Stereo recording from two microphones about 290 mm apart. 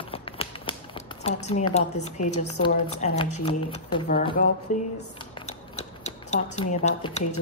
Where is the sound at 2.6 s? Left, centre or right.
Centre.